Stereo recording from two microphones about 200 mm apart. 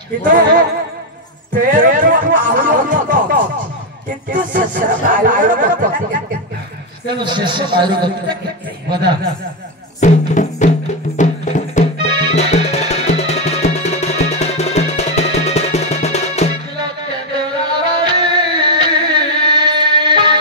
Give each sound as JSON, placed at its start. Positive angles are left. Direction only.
{"t": 1.5, "sound": "music", "side_deg": -40}
{"t": 4.3, "sound": "speech", "side_deg": -40}
{"t": 7.1, "sound": "a man's voice", "side_deg": -25}
{"t": 9.9, "sound": "music", "side_deg": 35}
{"t": 16.7, "sound": "music", "side_deg": -20}